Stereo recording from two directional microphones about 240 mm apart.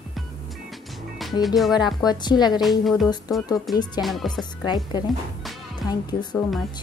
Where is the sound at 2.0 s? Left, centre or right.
Centre.